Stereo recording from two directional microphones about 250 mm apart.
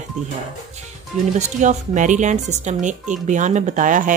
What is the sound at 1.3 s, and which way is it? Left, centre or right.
Speech, right.